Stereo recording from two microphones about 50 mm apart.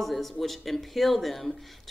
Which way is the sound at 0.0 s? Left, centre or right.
Centre.